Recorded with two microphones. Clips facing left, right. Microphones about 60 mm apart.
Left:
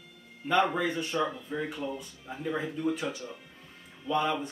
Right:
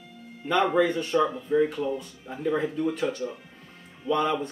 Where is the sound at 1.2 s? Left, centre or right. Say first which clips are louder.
Right 10 dB; centre.